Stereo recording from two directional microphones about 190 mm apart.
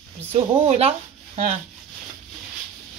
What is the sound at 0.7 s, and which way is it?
Speech, 35° right (ahead or behind).